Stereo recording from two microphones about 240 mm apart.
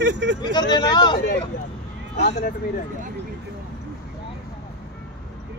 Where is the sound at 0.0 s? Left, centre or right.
Right.